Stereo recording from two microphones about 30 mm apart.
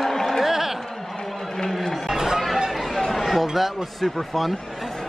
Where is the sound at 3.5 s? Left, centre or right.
Centre.